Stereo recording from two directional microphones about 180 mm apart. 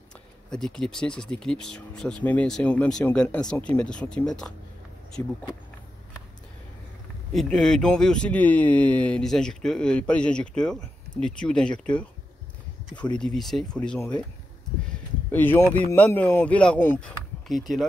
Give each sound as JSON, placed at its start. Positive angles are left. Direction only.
{"t": 0.5, "sound": "a man's voice", "side_deg": 5}
{"t": 7.3, "sound": "a man's voice", "side_deg": 0}
{"t": 15.3, "sound": "speech", "side_deg": 10}
{"t": 17.5, "sound": "a man's voice", "side_deg": 0}